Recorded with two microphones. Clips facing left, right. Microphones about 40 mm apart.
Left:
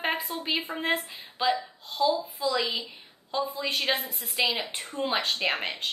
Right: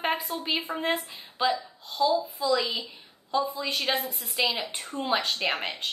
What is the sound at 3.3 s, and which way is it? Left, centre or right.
Speech, centre.